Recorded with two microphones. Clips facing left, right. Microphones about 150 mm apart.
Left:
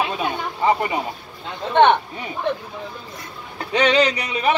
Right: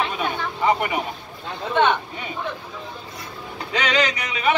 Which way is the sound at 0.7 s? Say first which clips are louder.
Left 1 dB; 30° left (ahead or behind).